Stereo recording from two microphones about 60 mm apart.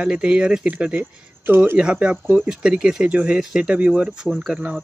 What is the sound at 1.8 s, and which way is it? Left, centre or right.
Speech, centre.